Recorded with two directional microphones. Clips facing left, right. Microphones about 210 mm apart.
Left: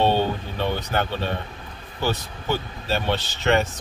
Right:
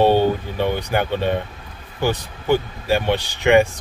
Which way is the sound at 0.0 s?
10° right (ahead or behind).